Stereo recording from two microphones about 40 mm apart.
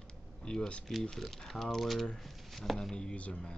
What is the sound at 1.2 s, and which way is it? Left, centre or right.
Speech, centre.